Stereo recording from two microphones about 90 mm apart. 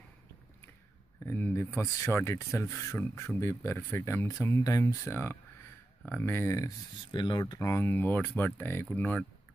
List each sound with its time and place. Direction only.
1.2 s speech: 25° left (ahead or behind)
5.1 s speech: 25° left (ahead or behind)
7.1 s speech: 60° left (ahead or behind)
7.5 s speech: 30° left (ahead or behind)